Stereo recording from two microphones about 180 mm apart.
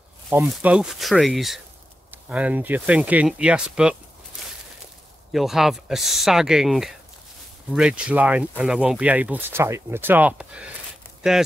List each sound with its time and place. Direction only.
0.3 s speech: 5° right (ahead or behind)
5.3 s speech: centre (ahead or behind)